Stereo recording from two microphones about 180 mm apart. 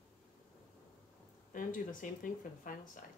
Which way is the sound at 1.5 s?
50° left (ahead or behind).